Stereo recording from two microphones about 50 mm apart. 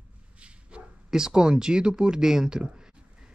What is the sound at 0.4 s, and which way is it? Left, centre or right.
Speech, right.